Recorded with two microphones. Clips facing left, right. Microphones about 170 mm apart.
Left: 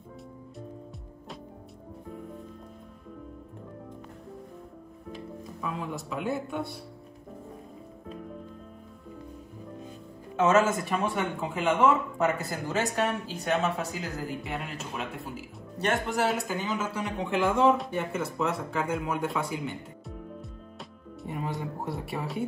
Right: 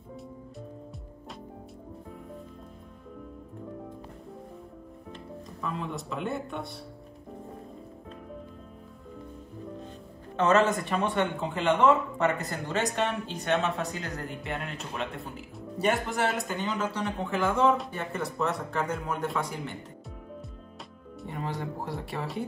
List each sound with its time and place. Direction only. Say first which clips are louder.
5.1 s speech: left 3 dB; centre (ahead or behind)
10.3 s speech: even; 5° left (ahead or behind)
21.2 s speech: left 1 dB; centre (ahead or behind)